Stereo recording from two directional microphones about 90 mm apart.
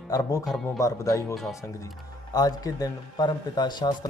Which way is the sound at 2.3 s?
45° left (ahead or behind).